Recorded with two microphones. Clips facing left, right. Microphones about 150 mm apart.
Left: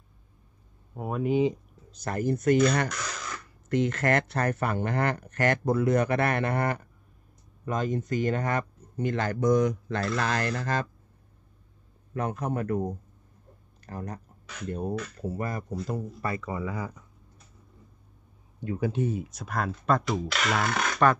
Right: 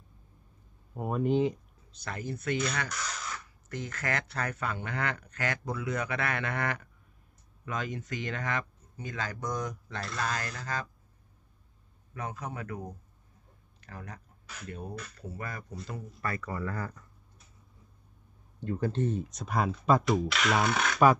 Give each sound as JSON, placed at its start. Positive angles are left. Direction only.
{"t": 0.9, "sound": "speech", "side_deg": 0}
{"t": 2.0, "sound": "speech", "side_deg": 45}
{"t": 2.9, "sound": "a sound", "side_deg": -5}
{"t": 3.6, "sound": "speech", "side_deg": 55}
{"t": 7.6, "sound": "speech", "side_deg": 40}
{"t": 8.9, "sound": "speech", "side_deg": 60}
{"t": 12.1, "sound": "speech", "side_deg": 55}
{"t": 13.8, "sound": "speech", "side_deg": 40}
{"t": 15.7, "sound": "speech", "side_deg": 0}
{"t": 16.2, "sound": "speech", "side_deg": 25}
{"t": 18.6, "sound": "speech", "side_deg": 10}